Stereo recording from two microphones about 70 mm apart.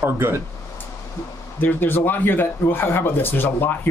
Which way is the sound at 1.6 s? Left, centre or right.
Left.